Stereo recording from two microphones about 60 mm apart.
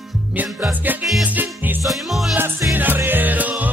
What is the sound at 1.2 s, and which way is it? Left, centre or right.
Music, right.